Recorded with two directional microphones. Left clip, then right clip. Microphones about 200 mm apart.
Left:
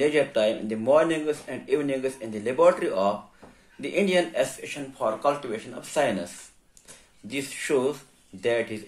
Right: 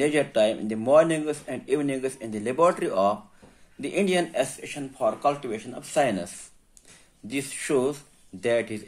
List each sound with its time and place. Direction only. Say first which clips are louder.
0.0 s speech: even; 35° right (ahead or behind)